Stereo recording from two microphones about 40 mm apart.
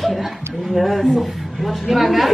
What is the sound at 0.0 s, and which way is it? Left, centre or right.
Speech, centre.